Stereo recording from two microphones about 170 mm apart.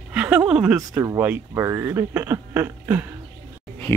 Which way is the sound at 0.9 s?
20° right (ahead or behind).